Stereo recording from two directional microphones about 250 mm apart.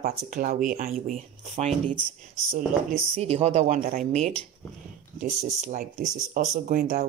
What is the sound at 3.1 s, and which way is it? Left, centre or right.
Speech, right.